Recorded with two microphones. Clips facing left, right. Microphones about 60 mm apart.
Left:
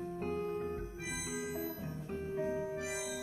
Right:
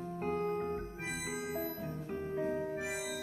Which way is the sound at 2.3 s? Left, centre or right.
Right.